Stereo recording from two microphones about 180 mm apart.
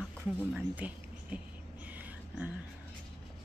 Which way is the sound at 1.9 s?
10° right (ahead or behind).